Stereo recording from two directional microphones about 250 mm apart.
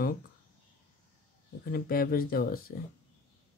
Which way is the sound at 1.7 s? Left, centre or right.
Left.